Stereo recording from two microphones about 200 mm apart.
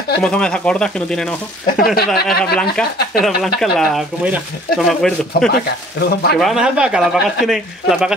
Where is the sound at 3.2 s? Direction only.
Centre (ahead or behind).